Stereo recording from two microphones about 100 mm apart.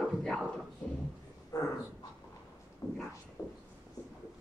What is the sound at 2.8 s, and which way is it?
Speech, 30° left (ahead or behind).